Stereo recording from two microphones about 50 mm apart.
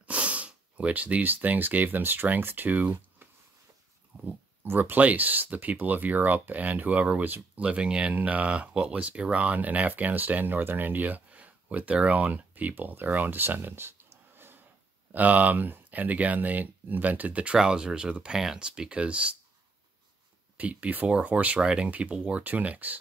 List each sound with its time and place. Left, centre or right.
0.0 s speech: right
4.6 s speech: right
15.1 s speech: right
20.5 s speech: right
21.5 s speech: centre
21.8 s speech: right